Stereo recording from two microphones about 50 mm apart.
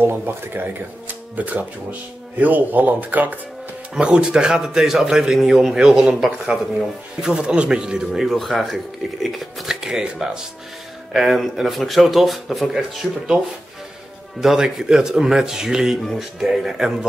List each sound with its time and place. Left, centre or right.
0.0 s speech: right
3.9 s a man's voice: centre
7.2 s a man's voice: centre
8.3 s speech: centre
9.8 s a man's voice: centre
14.4 s a man's voice: centre